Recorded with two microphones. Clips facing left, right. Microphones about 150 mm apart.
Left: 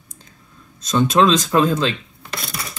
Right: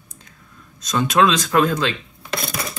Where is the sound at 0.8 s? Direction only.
25° left (ahead or behind).